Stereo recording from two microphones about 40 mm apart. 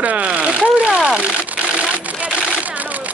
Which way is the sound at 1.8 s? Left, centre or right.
Right.